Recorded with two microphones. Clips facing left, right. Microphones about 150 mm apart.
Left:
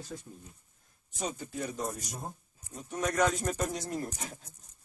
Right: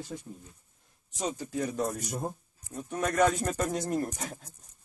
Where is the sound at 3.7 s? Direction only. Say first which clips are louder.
Right 5 dB; 50° right (ahead or behind).